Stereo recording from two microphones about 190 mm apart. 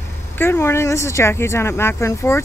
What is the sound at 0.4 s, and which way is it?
Speech, 10° left (ahead or behind).